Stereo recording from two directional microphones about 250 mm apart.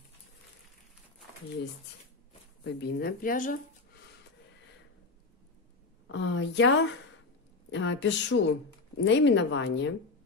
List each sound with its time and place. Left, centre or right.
2.6 s speech: left
6.1 s a woman's voice: left
7.7 s a woman's voice: left